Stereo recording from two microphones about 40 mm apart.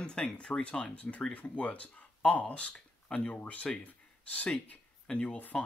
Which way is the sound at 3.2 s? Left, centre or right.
Left.